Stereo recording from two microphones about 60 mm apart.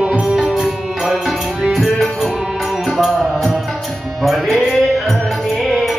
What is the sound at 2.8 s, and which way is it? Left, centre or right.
Music, centre.